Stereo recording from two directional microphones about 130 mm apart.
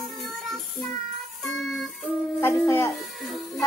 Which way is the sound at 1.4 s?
Centre (ahead or behind).